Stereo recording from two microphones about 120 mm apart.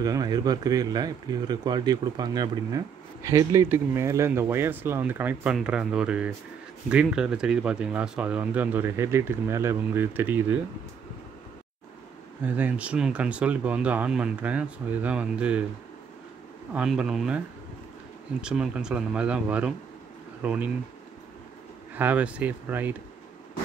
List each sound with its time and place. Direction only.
0.0 s a man's voice: 30° right (ahead or behind); by 10.6 s 15° right (ahead or behind)
12.4 s speech: 15° right (ahead or behind)
16.7 s speech: 5° right (ahead or behind)
18.4 s speech: 5° right (ahead or behind)
21.9 s speech: 15° right (ahead or behind)